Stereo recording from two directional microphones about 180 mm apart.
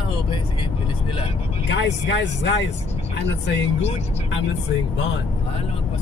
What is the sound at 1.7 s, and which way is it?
Speech, 75° left (ahead or behind).